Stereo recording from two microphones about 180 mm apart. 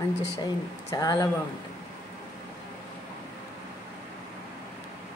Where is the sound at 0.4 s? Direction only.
20° left (ahead or behind).